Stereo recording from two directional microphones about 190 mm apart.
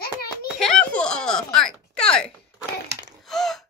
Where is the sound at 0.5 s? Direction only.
5° left (ahead or behind).